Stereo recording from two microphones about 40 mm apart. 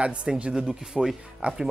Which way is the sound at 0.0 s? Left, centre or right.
Right.